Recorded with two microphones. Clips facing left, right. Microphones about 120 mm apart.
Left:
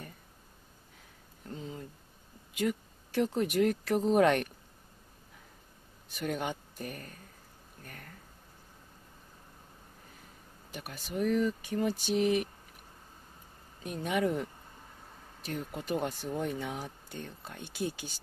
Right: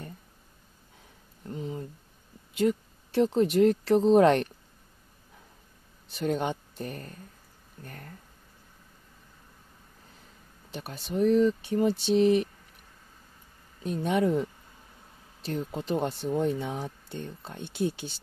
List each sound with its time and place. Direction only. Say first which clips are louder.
1.5 s a sound: right 6 dB; 20° right (ahead or behind)
2.5 s speech: right 6 dB; 30° right (ahead or behind)
6.1 s speech: right 6 dB; 30° right (ahead or behind)
10.7 s speech: right 5 dB; 30° right (ahead or behind)
13.8 s speech: right 5 dB; 30° right (ahead or behind)
15.4 s speech: right 5 dB; 30° right (ahead or behind)